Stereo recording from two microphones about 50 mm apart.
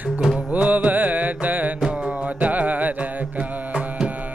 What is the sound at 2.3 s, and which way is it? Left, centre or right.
Carnatic music, right.